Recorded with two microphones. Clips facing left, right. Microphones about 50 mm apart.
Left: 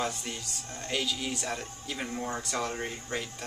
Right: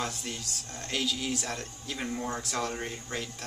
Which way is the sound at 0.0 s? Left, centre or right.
Centre.